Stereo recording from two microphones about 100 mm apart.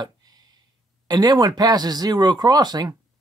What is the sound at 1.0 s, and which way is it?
Speech, 40° right (ahead or behind).